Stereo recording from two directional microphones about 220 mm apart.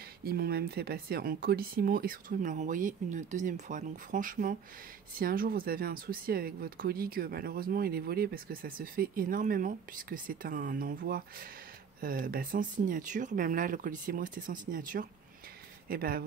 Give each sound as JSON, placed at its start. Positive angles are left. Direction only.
{"t": 0.2, "sound": "speech", "side_deg": -45}